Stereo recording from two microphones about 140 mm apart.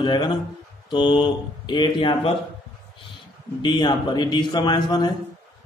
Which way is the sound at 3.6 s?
30° left (ahead or behind).